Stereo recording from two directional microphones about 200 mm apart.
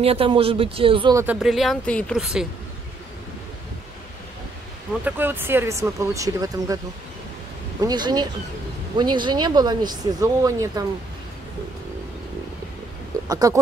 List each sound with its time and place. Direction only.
0.0 s speech: 30° right (ahead or behind)
1.1 s speech: 10° right (ahead or behind)
5.0 s speech: 10° right (ahead or behind)
7.8 s speech: 20° right (ahead or behind)
13.3 s speech: 15° right (ahead or behind)